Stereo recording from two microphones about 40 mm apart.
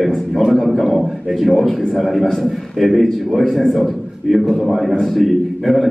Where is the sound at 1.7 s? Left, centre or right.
Centre.